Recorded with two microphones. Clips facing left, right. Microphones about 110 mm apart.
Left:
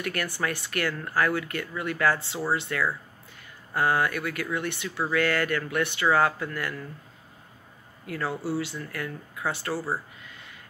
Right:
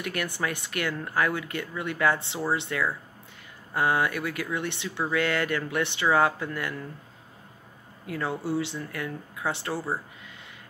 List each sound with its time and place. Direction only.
0.0 s speech: 20° right (ahead or behind)
8.1 s speech: 25° right (ahead or behind)